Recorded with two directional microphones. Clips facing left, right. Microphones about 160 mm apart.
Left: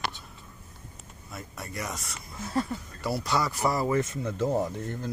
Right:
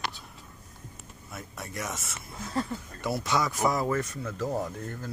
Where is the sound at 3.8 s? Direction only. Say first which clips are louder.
Left 3 dB; 20° left (ahead or behind).